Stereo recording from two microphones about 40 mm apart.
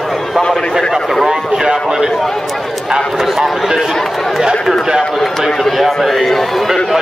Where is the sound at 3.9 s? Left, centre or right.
Centre.